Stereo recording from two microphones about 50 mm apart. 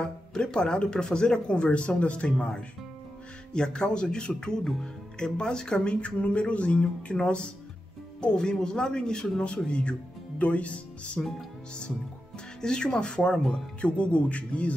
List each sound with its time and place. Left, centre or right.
0.0 s speech: centre
12.6 s speech: centre